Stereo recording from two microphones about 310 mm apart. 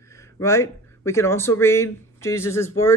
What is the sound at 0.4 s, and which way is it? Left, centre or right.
Speech, centre.